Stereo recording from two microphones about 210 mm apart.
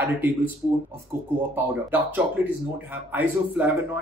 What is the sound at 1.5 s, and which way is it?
Speech, 10° right (ahead or behind).